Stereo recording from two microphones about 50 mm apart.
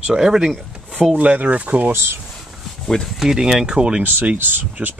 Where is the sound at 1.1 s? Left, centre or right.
Right.